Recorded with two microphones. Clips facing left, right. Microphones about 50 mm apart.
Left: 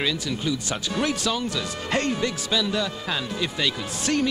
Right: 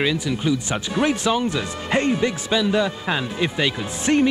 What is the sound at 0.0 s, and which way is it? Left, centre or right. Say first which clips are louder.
Speech: right 5 dB; centre.